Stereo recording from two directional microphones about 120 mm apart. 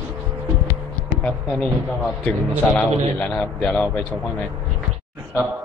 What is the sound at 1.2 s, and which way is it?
A man's voice, 5° left (ahead or behind).